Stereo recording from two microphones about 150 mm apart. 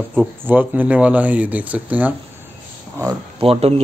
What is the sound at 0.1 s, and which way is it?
Speech, 10° right (ahead or behind).